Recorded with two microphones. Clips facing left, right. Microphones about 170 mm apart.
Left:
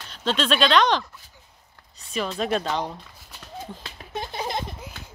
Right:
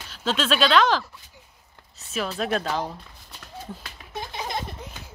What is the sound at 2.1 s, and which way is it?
Speech, 5° right (ahead or behind).